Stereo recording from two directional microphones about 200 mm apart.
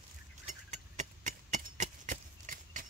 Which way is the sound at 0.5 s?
35° right (ahead or behind).